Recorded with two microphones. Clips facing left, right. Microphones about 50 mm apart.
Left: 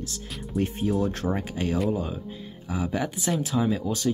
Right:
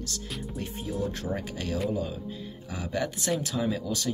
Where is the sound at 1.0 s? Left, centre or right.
Left.